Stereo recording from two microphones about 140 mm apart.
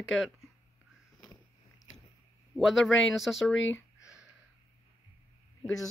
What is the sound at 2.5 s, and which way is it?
Speech, centre (ahead or behind).